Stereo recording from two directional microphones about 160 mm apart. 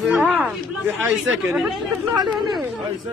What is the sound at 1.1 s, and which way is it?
Speech, centre (ahead or behind).